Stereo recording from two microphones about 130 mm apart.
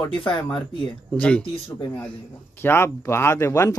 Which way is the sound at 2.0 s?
15° left (ahead or behind).